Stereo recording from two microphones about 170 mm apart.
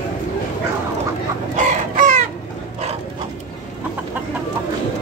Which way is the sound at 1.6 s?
45° right (ahead or behind).